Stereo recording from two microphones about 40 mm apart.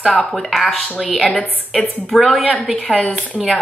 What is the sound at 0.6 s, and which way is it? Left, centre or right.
A woman's voice, centre.